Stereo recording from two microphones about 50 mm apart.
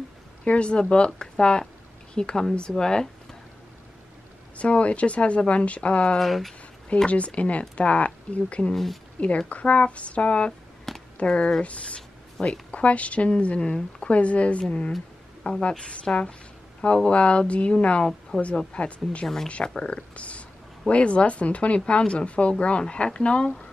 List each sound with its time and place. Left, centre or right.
0.5 s speech: left
4.6 s speech: left
6.1 s speech: centre
7.1 s a woman's voice: left
18.3 s speech: centre
18.7 s speech: left
20.2 s a sound: left
20.9 s speech: left